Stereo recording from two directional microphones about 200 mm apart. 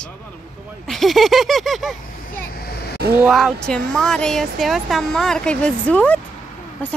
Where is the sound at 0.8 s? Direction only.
Centre (ahead or behind).